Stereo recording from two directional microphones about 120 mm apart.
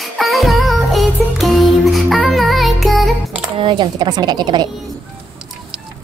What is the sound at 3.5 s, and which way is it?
Speech, 45° right (ahead or behind).